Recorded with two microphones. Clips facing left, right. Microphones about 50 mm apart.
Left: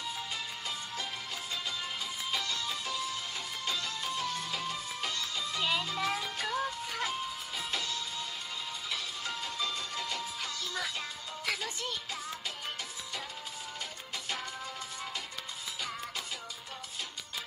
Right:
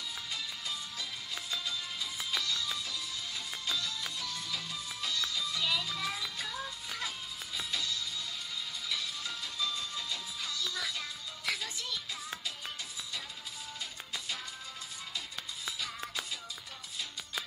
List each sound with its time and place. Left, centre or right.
0.3 s music: left
11.8 s music: left